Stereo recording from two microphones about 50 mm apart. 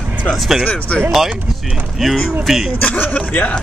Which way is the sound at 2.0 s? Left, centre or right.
Centre.